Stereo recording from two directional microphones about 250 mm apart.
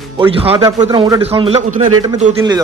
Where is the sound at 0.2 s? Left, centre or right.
Right.